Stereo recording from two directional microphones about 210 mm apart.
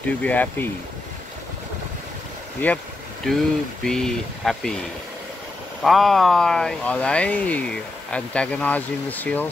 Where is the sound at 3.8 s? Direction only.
Centre (ahead or behind).